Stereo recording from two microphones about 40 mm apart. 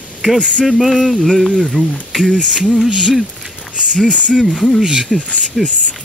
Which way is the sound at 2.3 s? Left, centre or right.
Right.